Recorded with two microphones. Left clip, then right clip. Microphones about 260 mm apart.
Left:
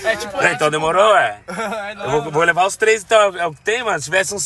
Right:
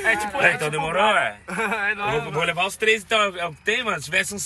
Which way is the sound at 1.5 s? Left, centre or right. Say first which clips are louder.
Right 1 dB; centre.